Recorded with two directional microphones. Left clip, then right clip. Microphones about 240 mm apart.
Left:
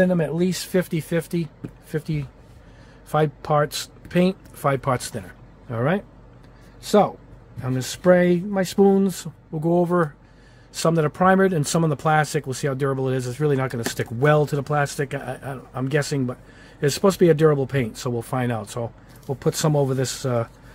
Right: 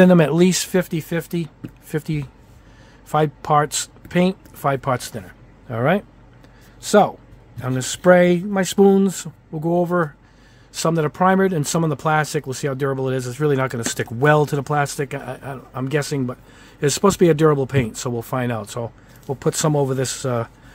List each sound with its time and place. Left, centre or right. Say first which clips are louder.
0.0 s speech: right 7 dB; right; by 20.4 s centre